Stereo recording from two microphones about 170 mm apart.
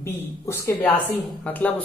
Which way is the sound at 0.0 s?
15° left (ahead or behind).